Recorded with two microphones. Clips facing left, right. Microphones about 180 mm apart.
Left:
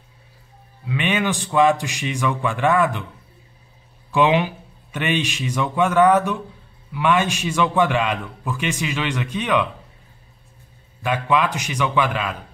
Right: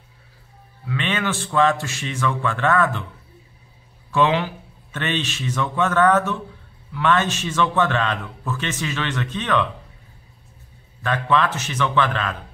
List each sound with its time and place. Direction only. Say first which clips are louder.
0.8 s a man's voice: left 3 dB; 15° left (ahead or behind)
4.1 s a man's voice: left 2 dB; 15° left (ahead or behind)
11.0 s a man's voice: even; 10° left (ahead or behind)